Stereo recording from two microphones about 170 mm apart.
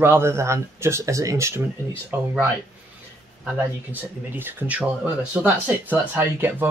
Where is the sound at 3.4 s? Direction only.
10° right (ahead or behind).